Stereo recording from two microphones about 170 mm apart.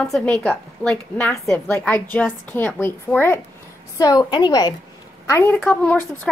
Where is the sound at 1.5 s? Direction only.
15° left (ahead or behind).